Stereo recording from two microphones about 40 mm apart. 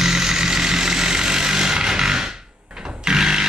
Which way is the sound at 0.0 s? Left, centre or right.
Centre.